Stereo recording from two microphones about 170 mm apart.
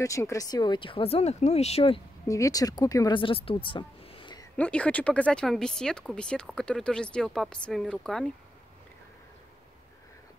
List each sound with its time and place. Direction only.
0.0 s speech: 20° left (ahead or behind); by 2.0 s 40° left (ahead or behind)
2.2 s speech: 20° left (ahead or behind)
4.6 s speech: 5° left (ahead or behind)